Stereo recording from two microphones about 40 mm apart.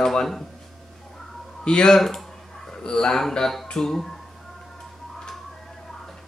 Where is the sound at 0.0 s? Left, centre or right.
Centre.